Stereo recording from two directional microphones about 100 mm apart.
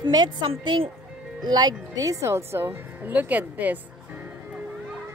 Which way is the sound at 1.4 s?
40° right (ahead or behind).